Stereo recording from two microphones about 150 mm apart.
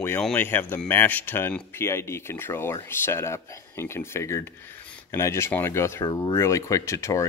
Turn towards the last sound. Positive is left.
turn(degrees=20)  # may be behind; listen again after turning